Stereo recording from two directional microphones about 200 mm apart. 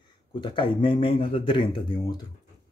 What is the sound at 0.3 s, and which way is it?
Speech, 25° left (ahead or behind).